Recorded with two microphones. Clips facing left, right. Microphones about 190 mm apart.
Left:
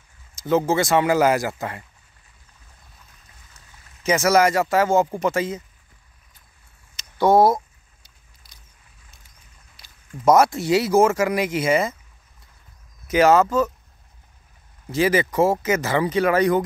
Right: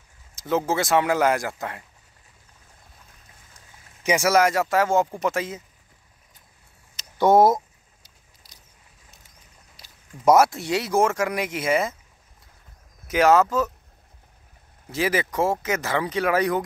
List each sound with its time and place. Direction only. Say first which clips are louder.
0.4 s speech: left 4 dB; centre (ahead or behind)
3.5 s a sound: right 1 dB; 15° right (ahead or behind)
4.3 s speech: left 3 dB; centre (ahead or behind)
7.2 s speech: left 1 dB; 20° right (ahead or behind)
8.0 s vehicle: right 1 dB; 40° right (ahead or behind)
10.2 s speech: left 1 dB; 5° right (ahead or behind)
13.1 s speech: left 2 dB; centre (ahead or behind)
14.9 s speech: left 5 dB; centre (ahead or behind)